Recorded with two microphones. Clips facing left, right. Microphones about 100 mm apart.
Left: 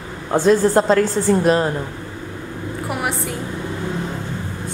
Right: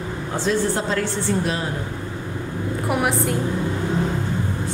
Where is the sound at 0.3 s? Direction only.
45° left (ahead or behind).